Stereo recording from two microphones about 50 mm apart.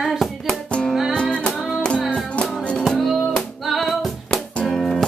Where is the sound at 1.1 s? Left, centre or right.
Left.